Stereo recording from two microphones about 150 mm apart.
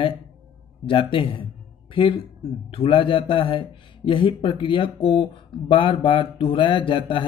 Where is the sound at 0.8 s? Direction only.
35° left (ahead or behind).